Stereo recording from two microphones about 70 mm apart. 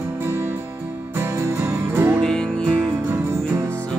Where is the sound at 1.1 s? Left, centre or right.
Right.